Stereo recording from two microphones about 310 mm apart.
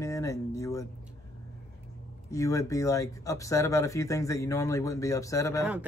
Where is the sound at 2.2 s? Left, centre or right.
Centre.